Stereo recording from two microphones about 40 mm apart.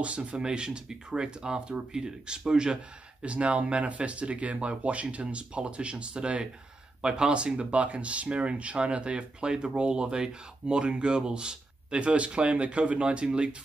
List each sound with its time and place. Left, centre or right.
0.0 s speech: right